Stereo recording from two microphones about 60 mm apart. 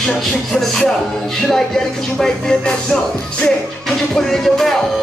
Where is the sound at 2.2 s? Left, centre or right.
Centre.